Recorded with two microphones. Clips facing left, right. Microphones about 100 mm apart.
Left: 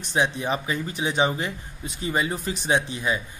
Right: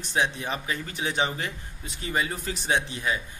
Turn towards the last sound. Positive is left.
turn(degrees=20)  # may be behind; listen again after turning